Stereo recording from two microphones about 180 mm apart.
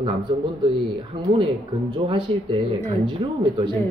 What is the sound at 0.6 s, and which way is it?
Speech, 25° right (ahead or behind).